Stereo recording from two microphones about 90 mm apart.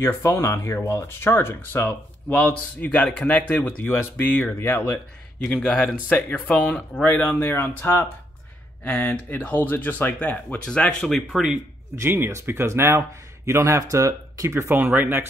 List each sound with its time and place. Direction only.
0.0 s speech: 35° left (ahead or behind)
8.8 s speech: 15° left (ahead or behind)
12.0 s speech: 25° right (ahead or behind)